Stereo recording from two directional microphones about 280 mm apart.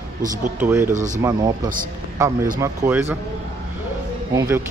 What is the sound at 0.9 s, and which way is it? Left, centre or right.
Speech, right.